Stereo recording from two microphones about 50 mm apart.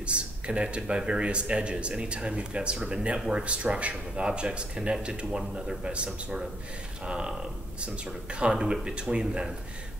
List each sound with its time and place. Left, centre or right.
0.0 s a man's voice: right